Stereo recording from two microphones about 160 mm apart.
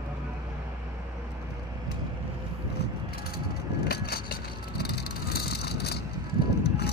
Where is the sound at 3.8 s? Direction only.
80° left.